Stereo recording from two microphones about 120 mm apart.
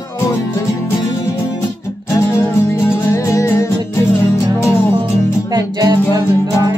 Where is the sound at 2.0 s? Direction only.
25° left (ahead or behind).